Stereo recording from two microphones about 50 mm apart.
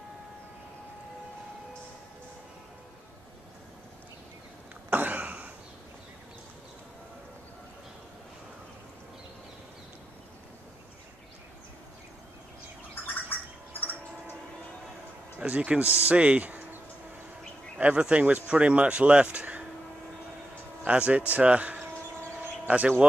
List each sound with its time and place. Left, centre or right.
4.8 s a sound: right
13.0 s gargling: left
15.3 s speech: right
17.7 s speech: right
20.8 s speech: right